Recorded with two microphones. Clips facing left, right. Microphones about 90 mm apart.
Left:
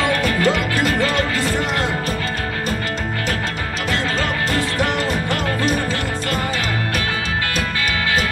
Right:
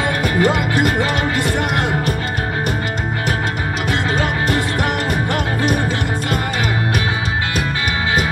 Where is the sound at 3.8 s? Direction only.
15° right (ahead or behind).